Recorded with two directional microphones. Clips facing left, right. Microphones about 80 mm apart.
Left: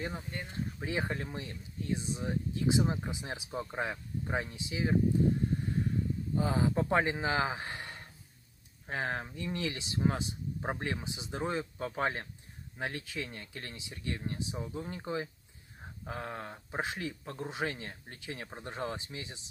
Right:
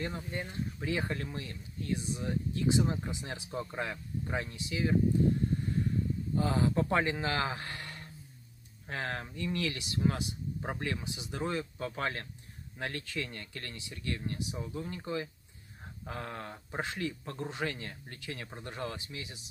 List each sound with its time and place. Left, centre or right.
0.0 s speech: centre
0.3 s speech: centre
0.7 s speech: centre
6.3 s a man's voice: centre
15.8 s speech: centre
17.5 s speech: centre